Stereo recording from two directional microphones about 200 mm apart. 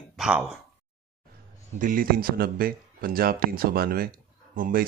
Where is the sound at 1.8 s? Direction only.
45° right (ahead or behind).